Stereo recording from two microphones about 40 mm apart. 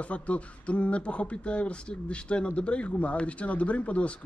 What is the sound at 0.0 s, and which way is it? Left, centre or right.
Speech, left.